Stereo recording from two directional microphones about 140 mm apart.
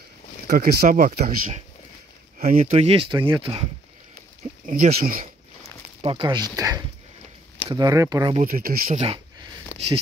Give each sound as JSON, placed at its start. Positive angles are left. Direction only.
{"t": 0.5, "sound": "speech", "side_deg": -90}
{"t": 2.7, "sound": "speech", "side_deg": -45}
{"t": 4.6, "sound": "speech", "side_deg": -70}
{"t": 6.0, "sound": "speech", "side_deg": -35}
{"t": 8.4, "sound": "speech", "side_deg": -85}
{"t": 8.9, "sound": "speech", "side_deg": -45}
{"t": 9.7, "sound": "a sound", "side_deg": 15}